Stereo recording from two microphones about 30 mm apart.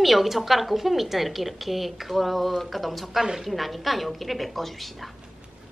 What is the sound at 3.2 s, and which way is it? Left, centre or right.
Speech, centre.